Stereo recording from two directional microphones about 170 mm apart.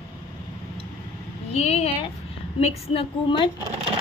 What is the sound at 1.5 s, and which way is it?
A woman's voice, 40° left (ahead or behind).